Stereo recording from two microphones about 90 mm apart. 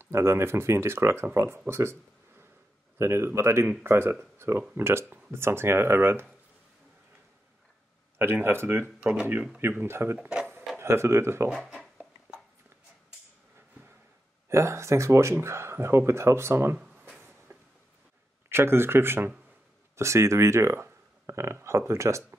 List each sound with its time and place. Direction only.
0.0 s speech: 30° right (ahead or behind)
1.7 s a sound: 30° right (ahead or behind)
3.0 s speech: 30° right (ahead or behind)
8.2 s speech: 25° right (ahead or behind)
9.0 s speech: 10° right (ahead or behind)
9.6 s speech: 30° right (ahead or behind)
11.5 s a sound: centre (ahead or behind)
14.5 s speech: 30° right (ahead or behind)
17.2 s a sound: 25° right (ahead or behind)
18.5 s speech: 25° right (ahead or behind)